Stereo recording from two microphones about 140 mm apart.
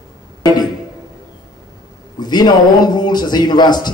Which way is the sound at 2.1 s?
30° left (ahead or behind).